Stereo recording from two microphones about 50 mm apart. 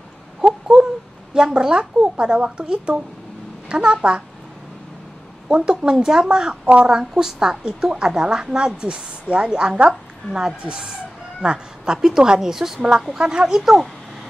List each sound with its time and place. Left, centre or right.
0.4 s a sound: centre
1.3 s a woman's voice: centre
5.5 s a woman's voice: centre
6.9 s a woman's voice: centre